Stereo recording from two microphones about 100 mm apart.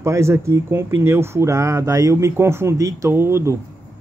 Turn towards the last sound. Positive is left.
turn(degrees=-25)  # may be behind; listen again after turning